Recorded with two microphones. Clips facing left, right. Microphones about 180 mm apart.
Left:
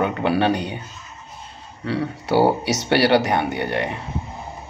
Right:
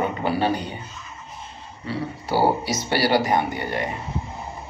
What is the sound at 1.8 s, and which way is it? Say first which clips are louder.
Speech: left 5 dB; 70° left (ahead or behind).